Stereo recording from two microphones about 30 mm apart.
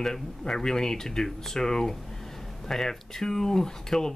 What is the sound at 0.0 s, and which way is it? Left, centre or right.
Speech, centre.